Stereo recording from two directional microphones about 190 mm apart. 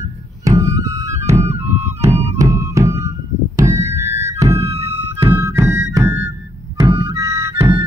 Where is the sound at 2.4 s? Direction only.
15° right (ahead or behind).